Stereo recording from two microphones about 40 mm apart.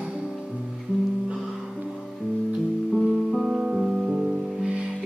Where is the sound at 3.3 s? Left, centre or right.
Centre.